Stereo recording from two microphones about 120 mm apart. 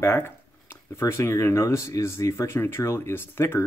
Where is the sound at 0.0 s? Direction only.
20° left (ahead or behind).